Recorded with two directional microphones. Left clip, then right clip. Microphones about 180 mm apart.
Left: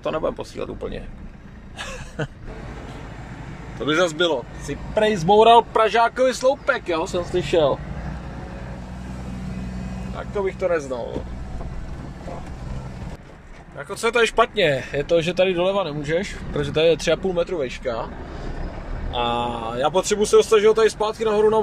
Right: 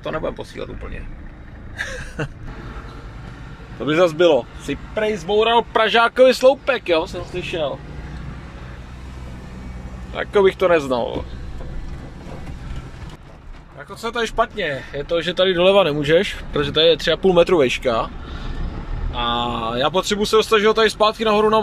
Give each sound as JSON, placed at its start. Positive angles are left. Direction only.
{"t": 0.0, "sound": "speech", "side_deg": 10}
{"t": 1.8, "sound": "a sound", "side_deg": 0}
{"t": 3.8, "sound": "speech", "side_deg": -5}
{"t": 4.9, "sound": "speech", "side_deg": 25}
{"t": 5.6, "sound": "speech", "side_deg": 5}
{"t": 7.1, "sound": "speech", "side_deg": 25}
{"t": 10.1, "sound": "speech", "side_deg": -10}
{"t": 13.7, "sound": "speech", "side_deg": 5}
{"t": 15.6, "sound": "speech", "side_deg": -10}
{"t": 17.3, "sound": "speech", "side_deg": -15}
{"t": 17.8, "sound": "speech", "side_deg": 0}
{"t": 19.1, "sound": "speech", "side_deg": 10}